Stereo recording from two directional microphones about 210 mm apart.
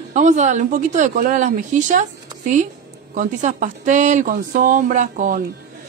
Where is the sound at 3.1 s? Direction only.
40° right (ahead or behind).